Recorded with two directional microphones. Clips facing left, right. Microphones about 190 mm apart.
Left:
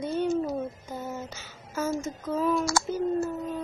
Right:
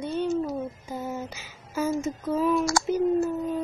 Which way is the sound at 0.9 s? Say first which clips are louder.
Right 3 dB; 15° right (ahead or behind).